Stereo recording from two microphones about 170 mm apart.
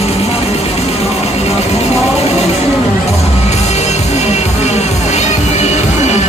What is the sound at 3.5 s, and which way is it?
Music, 40° left (ahead or behind).